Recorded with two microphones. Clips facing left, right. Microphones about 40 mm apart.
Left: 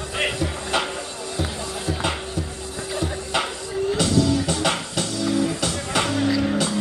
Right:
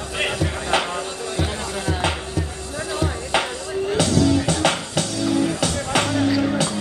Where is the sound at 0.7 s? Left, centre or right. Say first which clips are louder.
Right 4 dB; centre.